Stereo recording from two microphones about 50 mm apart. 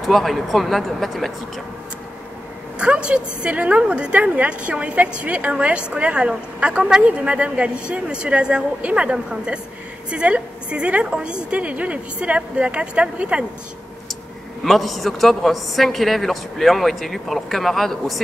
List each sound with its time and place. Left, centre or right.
0.0 s a man's voice: centre
2.8 s a woman's voice: right
14.6 s a man's voice: centre